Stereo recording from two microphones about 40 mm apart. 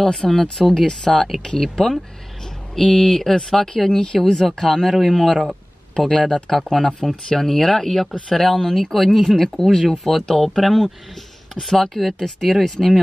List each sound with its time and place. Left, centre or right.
0.0 s speech: centre
6.5 s speech: centre